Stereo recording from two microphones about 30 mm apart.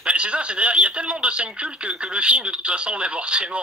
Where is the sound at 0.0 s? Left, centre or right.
Right.